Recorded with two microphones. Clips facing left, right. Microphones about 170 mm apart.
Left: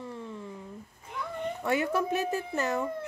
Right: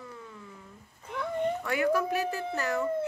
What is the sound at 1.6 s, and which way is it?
Speech, 25° left (ahead or behind).